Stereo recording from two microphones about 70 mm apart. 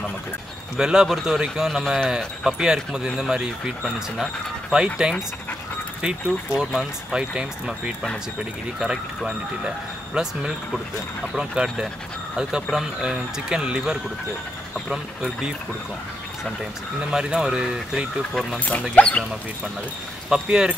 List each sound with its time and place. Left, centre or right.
0.7 s a man's voice: centre
2.1 s speech: centre
6.5 s a man's voice: centre
11.3 s speech: centre
17.0 s speech: centre
18.6 s speech: left
20.2 s speech: centre